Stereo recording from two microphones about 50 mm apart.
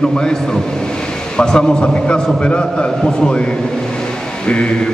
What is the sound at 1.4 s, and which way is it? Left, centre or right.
A man's voice, centre.